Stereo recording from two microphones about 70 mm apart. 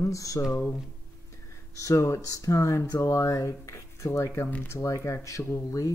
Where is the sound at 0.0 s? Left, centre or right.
Left.